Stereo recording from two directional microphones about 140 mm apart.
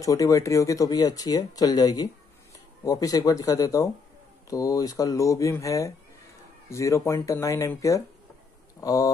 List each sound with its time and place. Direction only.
0.0 s speech: 25° left (ahead or behind)